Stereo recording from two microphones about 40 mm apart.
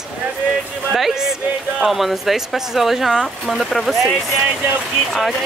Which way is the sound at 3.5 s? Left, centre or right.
Centre.